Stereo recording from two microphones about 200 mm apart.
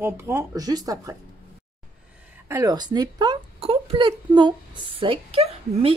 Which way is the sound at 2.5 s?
20° right (ahead or behind).